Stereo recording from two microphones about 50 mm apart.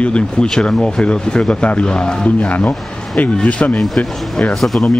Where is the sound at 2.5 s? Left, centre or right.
Left.